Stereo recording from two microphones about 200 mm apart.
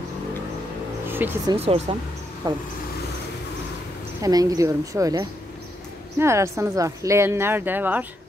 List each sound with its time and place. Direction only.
1.0 s speech: 10° right (ahead or behind)
1.6 s speech: 30° right (ahead or behind)
2.4 s speech: 20° right (ahead or behind)
4.2 s speech: 20° right (ahead or behind)